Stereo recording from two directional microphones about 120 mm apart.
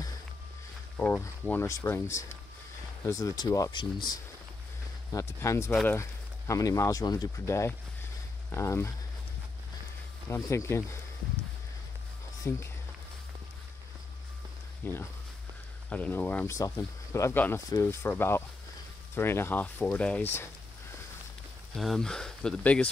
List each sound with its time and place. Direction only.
0.9 s speech: 15° left (ahead or behind); by 4.2 s 35° left (ahead or behind)
5.1 s speech: 25° left (ahead or behind)
10.3 s speech: 25° left (ahead or behind)
12.4 s speech: 20° left (ahead or behind)
14.8 s speech: 15° left (ahead or behind)
16.5 s speech: 25° left (ahead or behind)
21.7 s speech: centre (ahead or behind)